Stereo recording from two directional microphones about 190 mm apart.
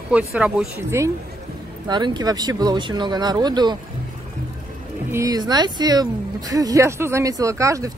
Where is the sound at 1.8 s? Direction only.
25° right (ahead or behind).